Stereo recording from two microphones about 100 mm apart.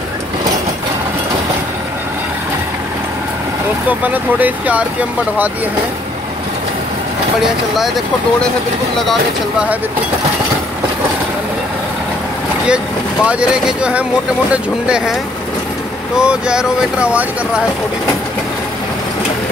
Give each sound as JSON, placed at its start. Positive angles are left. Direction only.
{"t": 4.0, "sound": "speech", "side_deg": -15}
{"t": 12.6, "sound": "speech", "side_deg": -10}
{"t": 16.2, "sound": "speech", "side_deg": -10}